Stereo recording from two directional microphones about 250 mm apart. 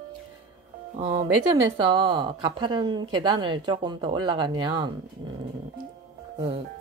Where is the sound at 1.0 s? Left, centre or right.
Centre.